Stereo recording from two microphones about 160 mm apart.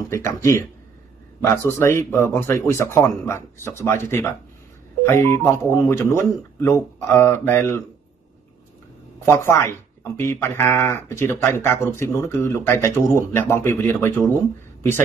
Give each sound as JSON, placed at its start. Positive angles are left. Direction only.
{"t": 0.1, "sound": "speech", "side_deg": 15}
{"t": 9.2, "sound": "speech", "side_deg": 15}